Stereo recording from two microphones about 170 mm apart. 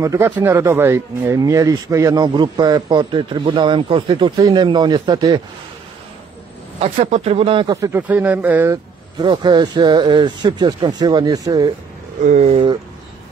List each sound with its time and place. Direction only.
0.0 s speech: 15° right (ahead or behind)
6.8 s speech: 40° right (ahead or behind); by 8.0 s 20° right (ahead or behind)
8.1 s speech: 10° right (ahead or behind)
9.2 s speech: 25° right (ahead or behind)
12.2 s speech: 45° right (ahead or behind)